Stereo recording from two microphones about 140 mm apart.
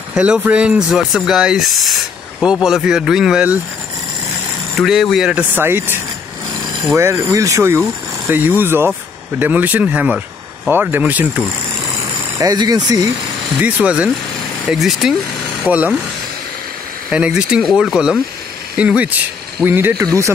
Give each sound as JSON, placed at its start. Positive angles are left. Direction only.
{"t": 0.1, "sound": "speech", "side_deg": -10}
{"t": 4.7, "sound": "speech", "side_deg": 0}
{"t": 7.0, "sound": "speech", "side_deg": -20}
{"t": 12.4, "sound": "speech", "side_deg": -25}
{"t": 13.6, "sound": "speech", "side_deg": -10}
{"t": 17.1, "sound": "speech", "side_deg": -5}